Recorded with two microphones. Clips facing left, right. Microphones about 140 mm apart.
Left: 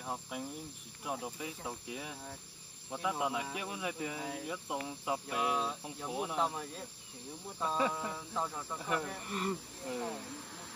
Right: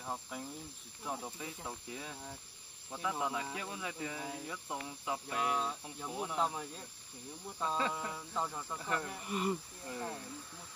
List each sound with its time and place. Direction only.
0.0 s cricket: 5° left (ahead or behind)
6.4 s speech: centre (ahead or behind)
7.6 s cricket: 10° left (ahead or behind)
7.9 s speech: centre (ahead or behind)
9.0 s speech: 5° right (ahead or behind)
9.8 s cricket: 15° left (ahead or behind)